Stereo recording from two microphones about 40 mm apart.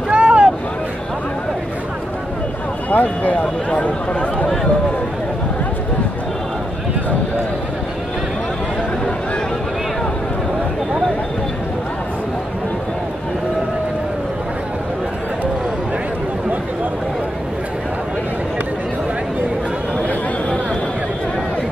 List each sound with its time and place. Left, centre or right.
0.1 s boat: right
2.9 s speech: left